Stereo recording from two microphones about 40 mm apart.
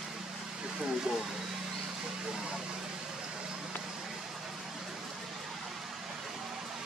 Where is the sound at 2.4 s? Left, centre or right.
Centre.